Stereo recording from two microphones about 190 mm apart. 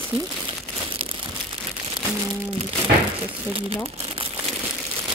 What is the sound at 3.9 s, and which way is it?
Crumpling, 30° right (ahead or behind).